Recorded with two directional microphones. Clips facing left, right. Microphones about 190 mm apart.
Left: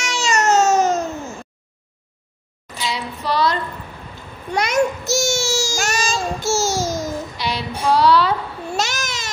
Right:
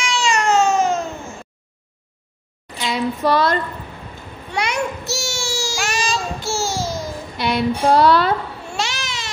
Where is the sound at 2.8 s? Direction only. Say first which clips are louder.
Right 6 dB; 50° right (ahead or behind).